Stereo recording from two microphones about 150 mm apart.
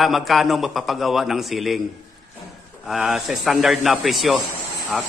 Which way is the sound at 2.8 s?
Centre (ahead or behind).